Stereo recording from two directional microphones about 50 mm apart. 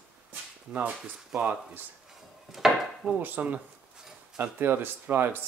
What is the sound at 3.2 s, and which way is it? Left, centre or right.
Speech, right.